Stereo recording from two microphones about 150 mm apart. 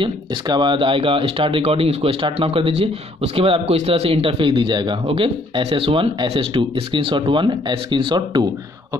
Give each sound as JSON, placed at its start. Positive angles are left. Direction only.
{"t": 0.0, "sound": "a man's voice", "side_deg": -30}